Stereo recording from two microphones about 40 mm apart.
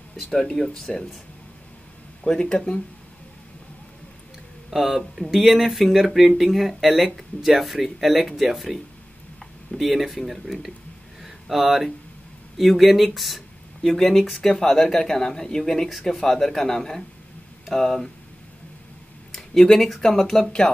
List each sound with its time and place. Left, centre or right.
0.2 s speech: centre
2.4 s speech: left
4.6 s speech: centre
19.3 s a sound: centre
20.0 s speech: centre
20.6 s speech: left